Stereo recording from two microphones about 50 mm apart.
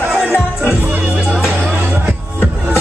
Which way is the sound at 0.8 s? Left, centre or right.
Right.